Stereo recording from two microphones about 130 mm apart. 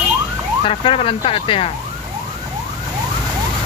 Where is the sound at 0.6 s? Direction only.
45° left (ahead or behind).